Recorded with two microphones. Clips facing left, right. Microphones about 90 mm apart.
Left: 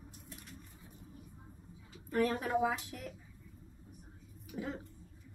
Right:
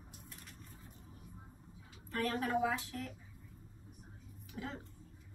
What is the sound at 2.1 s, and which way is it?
A woman's voice, 20° left (ahead or behind).